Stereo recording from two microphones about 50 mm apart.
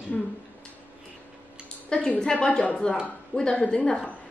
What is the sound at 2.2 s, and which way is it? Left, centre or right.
A woman's voice, centre.